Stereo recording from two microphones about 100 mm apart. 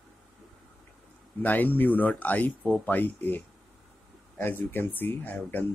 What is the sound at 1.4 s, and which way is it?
Speech, 15° left (ahead or behind).